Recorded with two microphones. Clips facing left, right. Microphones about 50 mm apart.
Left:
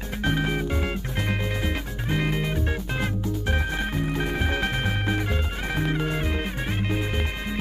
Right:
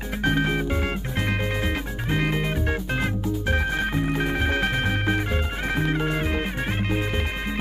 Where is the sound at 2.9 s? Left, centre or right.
Right.